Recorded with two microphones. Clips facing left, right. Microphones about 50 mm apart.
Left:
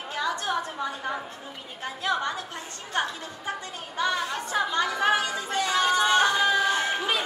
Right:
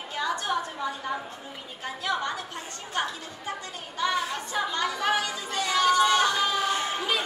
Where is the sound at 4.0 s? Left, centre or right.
Left.